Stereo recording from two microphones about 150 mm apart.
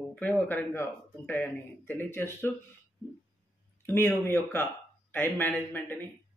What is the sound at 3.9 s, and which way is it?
A man's voice, 15° left (ahead or behind).